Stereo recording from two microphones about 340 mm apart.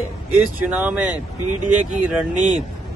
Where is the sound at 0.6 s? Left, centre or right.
Centre.